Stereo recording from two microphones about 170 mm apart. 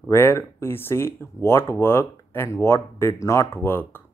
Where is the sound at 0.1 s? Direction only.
15° left (ahead or behind).